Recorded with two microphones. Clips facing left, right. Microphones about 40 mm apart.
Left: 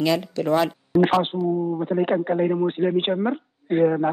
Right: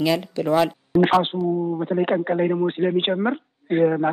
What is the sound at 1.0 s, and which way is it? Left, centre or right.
Speech, right.